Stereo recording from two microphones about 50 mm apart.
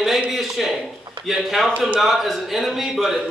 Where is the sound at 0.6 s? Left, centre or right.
Centre.